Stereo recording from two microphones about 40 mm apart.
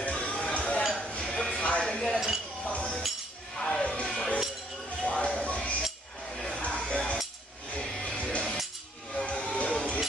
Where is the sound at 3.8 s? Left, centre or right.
Left.